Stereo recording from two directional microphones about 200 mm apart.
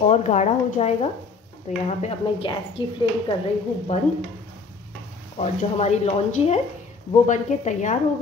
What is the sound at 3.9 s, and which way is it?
Speech, 35° left (ahead or behind).